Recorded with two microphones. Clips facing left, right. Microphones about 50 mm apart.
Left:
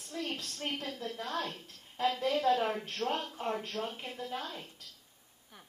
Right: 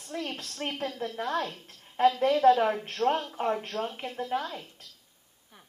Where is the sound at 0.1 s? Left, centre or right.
Right.